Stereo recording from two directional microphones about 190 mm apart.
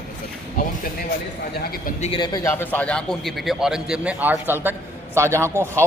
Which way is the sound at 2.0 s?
25° left (ahead or behind).